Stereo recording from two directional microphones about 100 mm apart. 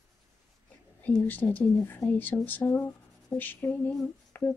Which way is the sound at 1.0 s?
15° left (ahead or behind).